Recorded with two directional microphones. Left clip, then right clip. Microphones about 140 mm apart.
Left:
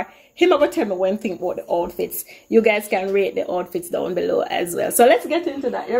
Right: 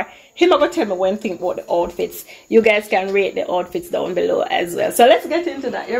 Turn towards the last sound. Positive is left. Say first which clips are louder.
# right 1 dB
turn(degrees=25)  # may be behind; listen again after turning